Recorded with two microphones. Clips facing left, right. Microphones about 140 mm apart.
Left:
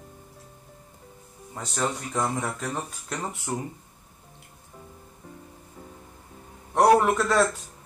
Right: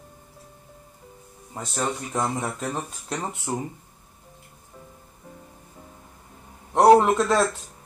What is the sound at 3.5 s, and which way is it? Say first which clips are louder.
Speech: right 2 dB; 20° right (ahead or behind).